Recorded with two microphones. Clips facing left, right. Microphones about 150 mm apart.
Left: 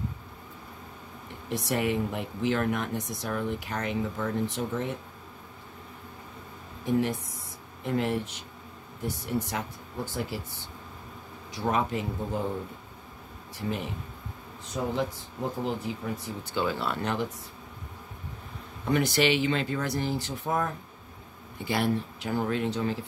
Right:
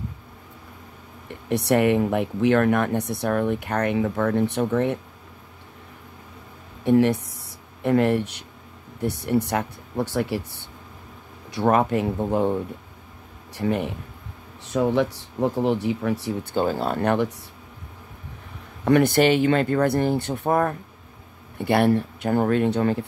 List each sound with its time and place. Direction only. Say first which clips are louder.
1.5 s speech: right 9 dB; 65° right (ahead or behind)
6.8 s speech: right 9 dB; 65° right (ahead or behind)
13.6 s speech: right 8 dB; 60° right (ahead or behind)
14.7 s speech: right 9 dB; 75° right (ahead or behind)
16.5 s speech: right 5 dB; 45° right (ahead or behind)
18.9 s speech: right 8 dB; 60° right (ahead or behind)